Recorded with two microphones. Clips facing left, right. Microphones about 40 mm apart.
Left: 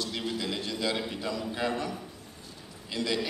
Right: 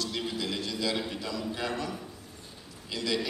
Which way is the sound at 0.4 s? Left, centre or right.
Left.